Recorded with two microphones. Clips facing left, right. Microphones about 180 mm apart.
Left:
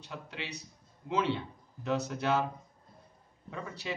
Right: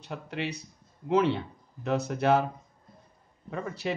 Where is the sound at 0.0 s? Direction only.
55° right (ahead or behind).